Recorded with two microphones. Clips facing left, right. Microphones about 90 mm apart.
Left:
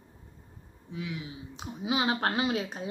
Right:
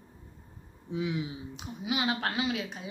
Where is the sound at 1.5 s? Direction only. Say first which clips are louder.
Left 4 dB; 30° left (ahead or behind).